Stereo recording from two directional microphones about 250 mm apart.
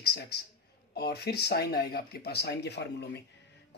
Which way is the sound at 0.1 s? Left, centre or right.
Left.